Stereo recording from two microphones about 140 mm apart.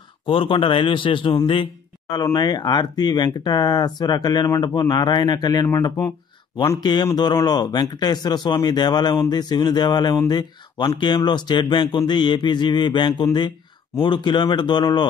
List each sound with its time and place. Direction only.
0.3 s speech: 40° left (ahead or behind)